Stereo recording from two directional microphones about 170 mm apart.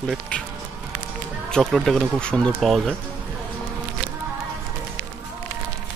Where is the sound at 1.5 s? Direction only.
5° left (ahead or behind).